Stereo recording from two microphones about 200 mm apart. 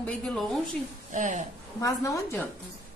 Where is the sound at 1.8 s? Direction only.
15° left (ahead or behind).